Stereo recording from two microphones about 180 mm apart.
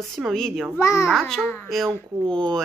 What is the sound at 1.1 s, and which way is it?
Speech, centre (ahead or behind).